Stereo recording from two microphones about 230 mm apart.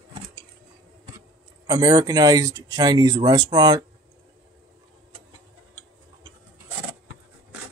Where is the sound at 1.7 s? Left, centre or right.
Centre.